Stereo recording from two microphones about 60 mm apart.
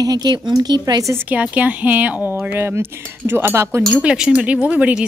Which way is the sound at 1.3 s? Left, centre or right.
Right.